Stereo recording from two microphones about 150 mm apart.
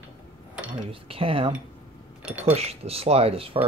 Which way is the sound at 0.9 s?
40° right (ahead or behind).